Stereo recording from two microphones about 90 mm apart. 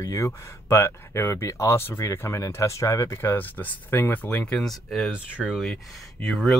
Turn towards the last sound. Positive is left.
turn(degrees=5)  # may be behind; listen again after turning